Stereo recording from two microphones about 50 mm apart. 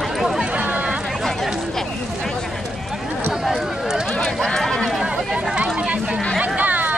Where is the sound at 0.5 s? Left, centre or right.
Right.